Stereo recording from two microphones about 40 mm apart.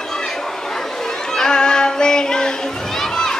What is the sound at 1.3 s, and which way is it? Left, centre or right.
Child singing, centre.